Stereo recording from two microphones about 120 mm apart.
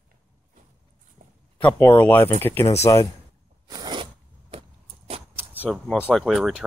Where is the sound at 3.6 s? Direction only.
35° right (ahead or behind).